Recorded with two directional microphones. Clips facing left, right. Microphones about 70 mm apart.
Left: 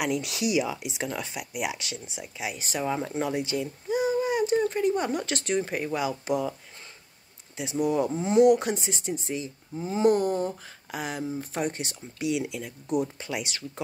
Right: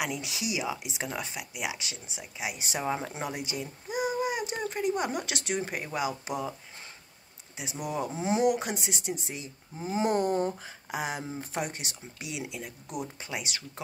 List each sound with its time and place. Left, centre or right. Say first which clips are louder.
0.0 s speech: left 6 dB; centre
2.5 s speech: left 3 dB; centre
7.5 s speech: left 8 dB; centre
8.1 s speech: left 6 dB; centre
10.1 s speech: left 1 dB; right
10.9 s speech: left 2 dB; centre
11.6 s speech: left 6 dB; centre